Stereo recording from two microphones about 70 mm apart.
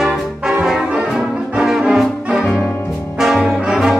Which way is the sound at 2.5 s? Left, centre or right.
Left.